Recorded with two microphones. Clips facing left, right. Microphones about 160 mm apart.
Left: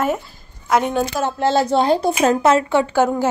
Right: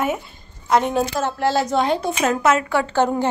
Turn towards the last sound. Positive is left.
turn(degrees=5)  # may be behind; listen again after turning